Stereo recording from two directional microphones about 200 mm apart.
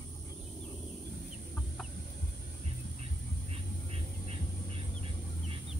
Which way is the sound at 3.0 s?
30° right (ahead or behind).